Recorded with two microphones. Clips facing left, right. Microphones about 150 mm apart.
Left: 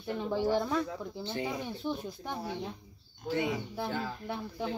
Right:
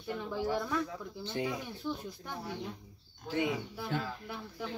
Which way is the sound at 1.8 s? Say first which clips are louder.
Left 2 dB; 20° left (ahead or behind).